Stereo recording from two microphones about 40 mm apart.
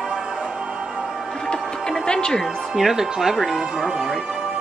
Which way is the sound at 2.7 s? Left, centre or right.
Centre.